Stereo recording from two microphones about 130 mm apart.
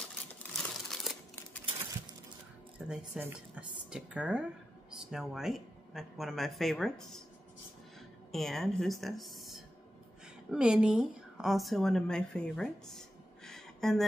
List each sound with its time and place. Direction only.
0.6 s crumpling: centre (ahead or behind)
2.8 s speech: 5° right (ahead or behind)
3.2 s speech: 15° right (ahead or behind); by 7.2 s 5° left (ahead or behind)
8.3 s a woman's voice: centre (ahead or behind)